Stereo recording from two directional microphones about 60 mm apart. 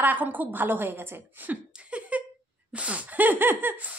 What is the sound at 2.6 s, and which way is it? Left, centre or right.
Speech, right.